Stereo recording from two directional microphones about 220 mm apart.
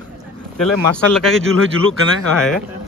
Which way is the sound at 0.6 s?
Centre (ahead or behind).